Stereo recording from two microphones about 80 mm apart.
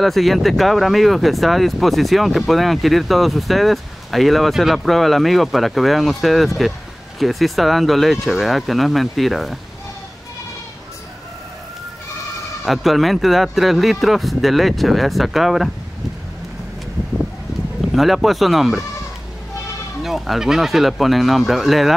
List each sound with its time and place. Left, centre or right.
0.0 s speech: centre
12.6 s speech: centre
17.9 s speech: centre
20.0 s speech: centre